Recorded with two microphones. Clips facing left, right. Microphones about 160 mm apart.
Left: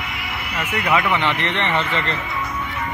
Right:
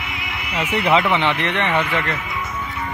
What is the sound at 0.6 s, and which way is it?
A man's voice, 10° right (ahead or behind).